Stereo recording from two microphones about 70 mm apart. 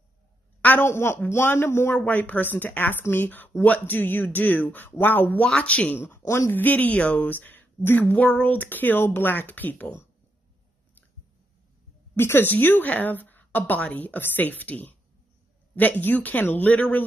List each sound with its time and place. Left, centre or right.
0.6 s a sound: left
0.8 s a man's voice: left
2.0 s a woman's voice: left
6.0 s a man's voice: left
6.5 s a woman's voice: left
12.2 s a woman's voice: left